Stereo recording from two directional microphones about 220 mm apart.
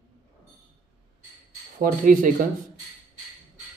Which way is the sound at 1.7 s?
40° right (ahead or behind).